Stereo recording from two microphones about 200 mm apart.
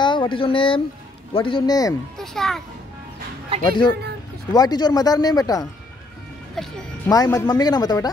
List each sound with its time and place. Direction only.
0.0 s speech: 25° left (ahead or behind)
2.1 s a child's voice: centre (ahead or behind)
3.5 s speech: 30° right (ahead or behind)
4.5 s speech: 20° left (ahead or behind)
6.6 s a child's voice: centre (ahead or behind)
7.1 s speech: 20° left (ahead or behind)